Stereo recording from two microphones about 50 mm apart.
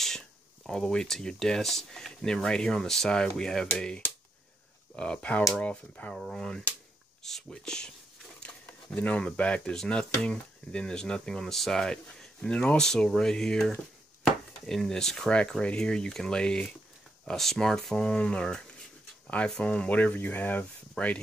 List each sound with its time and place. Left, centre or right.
0.0 s speech: centre
4.9 s speech: centre
6.3 s speech: centre
8.9 s speech: left; by 12.3 s centre
12.4 s speech: left
12.8 s speech: centre
14.2 s wood: centre
15.6 s speech: centre
17.9 s speech: left
21.0 s speech: left